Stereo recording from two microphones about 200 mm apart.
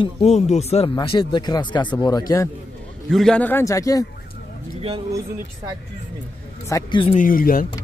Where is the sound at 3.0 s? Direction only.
Centre (ahead or behind).